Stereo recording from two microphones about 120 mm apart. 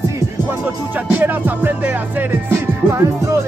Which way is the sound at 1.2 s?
15° right (ahead or behind).